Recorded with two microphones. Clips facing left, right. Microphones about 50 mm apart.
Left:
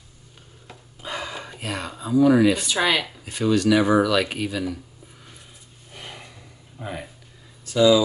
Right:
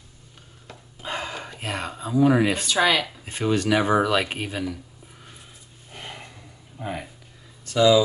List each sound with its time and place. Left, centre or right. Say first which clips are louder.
1.0 s a sound: right 1 dB; right
1.6 s speech: even; right
2.6 s speech: right 1 dB; centre
3.3 s speech: left 4 dB; right
5.9 s gasp: right 1 dB; centre
6.8 s speech: right 1 dB; centre
7.7 s speech: left 1 dB; right